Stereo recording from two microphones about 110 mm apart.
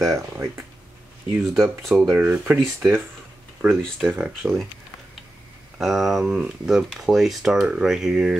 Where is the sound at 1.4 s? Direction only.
5° right (ahead or behind).